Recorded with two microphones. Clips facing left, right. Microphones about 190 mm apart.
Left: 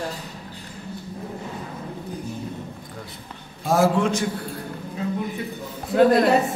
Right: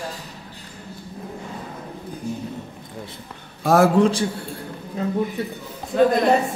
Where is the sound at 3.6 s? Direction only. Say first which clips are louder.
Right 3 dB; 65° right (ahead or behind).